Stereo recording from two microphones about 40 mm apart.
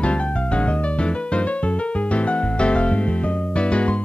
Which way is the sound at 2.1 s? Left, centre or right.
Left.